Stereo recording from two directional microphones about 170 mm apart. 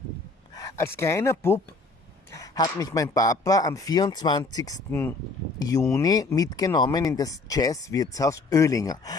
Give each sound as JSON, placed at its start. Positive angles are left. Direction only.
{"t": 0.6, "sound": "speech", "side_deg": 15}